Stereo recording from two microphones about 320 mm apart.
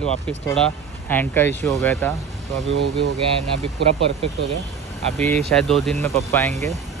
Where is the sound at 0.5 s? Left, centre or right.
Centre.